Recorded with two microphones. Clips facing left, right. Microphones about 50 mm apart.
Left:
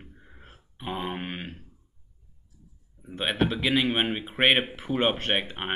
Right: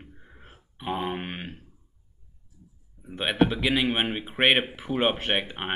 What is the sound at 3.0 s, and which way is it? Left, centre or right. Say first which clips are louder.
Speech: right 3 dB; centre.